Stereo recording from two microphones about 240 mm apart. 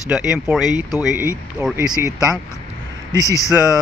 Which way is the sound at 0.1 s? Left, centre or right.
Centre.